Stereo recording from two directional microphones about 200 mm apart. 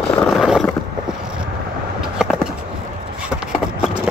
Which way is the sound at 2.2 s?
5° right (ahead or behind).